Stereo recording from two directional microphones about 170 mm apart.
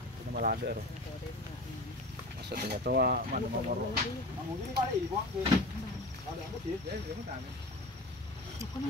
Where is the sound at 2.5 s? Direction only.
65° right (ahead or behind).